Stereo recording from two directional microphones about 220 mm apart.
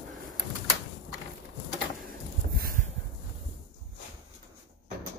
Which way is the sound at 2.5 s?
40° right (ahead or behind).